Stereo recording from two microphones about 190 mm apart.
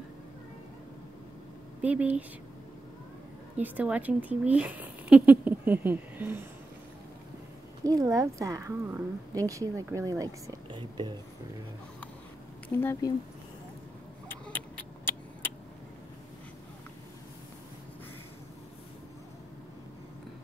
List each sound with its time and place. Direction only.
1.8 s speech: 5° right (ahead or behind)
3.5 s speech: 10° right (ahead or behind)
7.8 s a woman's voice: 20° right (ahead or behind)
12.7 s speech: 10° left (ahead or behind)